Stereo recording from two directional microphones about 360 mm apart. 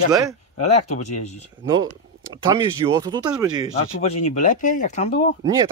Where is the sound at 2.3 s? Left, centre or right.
Centre.